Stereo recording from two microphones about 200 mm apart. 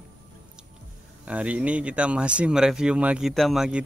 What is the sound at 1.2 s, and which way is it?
Speech, 5° right (ahead or behind).